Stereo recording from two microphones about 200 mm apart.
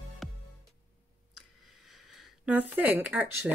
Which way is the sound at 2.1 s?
5° right (ahead or behind).